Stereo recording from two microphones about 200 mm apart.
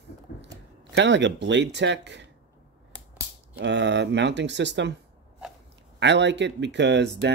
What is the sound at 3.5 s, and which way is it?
Speech, 60° right (ahead or behind).